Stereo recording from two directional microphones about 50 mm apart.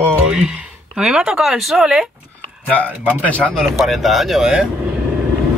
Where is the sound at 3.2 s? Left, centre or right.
Left.